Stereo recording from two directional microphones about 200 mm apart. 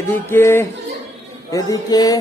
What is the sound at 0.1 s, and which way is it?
A man's voice, 10° left (ahead or behind).